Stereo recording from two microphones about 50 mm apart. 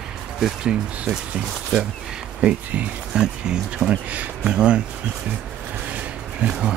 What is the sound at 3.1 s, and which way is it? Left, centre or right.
Speech, centre.